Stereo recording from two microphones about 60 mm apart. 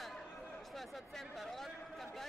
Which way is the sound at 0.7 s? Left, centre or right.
Centre.